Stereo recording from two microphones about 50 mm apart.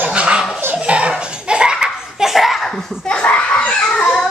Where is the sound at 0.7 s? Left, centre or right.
Right; by 2.7 s centre.